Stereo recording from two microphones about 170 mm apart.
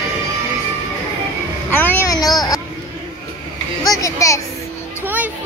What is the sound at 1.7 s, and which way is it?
Speech, 15° left (ahead or behind).